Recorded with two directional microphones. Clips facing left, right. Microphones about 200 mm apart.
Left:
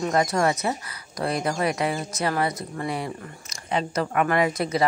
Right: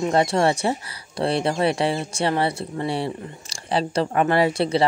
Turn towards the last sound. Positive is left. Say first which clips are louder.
# right 3 dB
turn(degrees=-30)  # may be behind; listen again after turning